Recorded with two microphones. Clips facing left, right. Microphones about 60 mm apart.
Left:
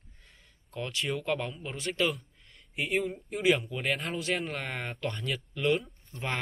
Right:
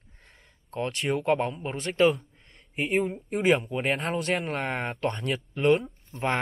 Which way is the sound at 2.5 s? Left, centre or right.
Right.